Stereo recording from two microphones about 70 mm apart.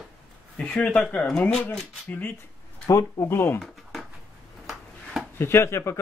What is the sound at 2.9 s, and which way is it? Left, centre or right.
Speech, left.